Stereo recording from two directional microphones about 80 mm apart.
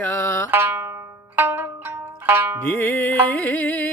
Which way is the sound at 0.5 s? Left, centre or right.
Right.